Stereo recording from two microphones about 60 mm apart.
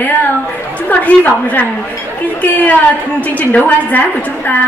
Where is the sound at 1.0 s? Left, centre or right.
Left.